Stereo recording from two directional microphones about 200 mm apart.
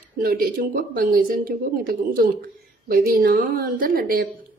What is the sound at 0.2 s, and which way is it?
Speech, 45° right (ahead or behind).